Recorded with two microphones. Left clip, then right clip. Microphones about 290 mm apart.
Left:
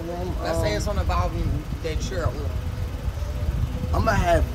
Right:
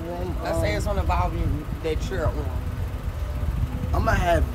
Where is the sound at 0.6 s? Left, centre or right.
Right.